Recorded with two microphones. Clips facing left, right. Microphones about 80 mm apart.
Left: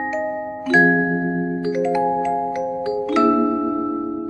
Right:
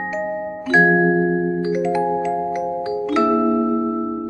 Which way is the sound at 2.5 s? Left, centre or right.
Right.